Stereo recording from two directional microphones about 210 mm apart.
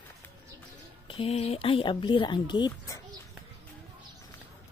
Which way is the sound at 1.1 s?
25° left (ahead or behind).